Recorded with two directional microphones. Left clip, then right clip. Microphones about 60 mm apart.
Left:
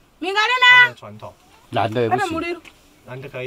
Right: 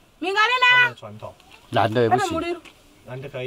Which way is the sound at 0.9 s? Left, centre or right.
Left.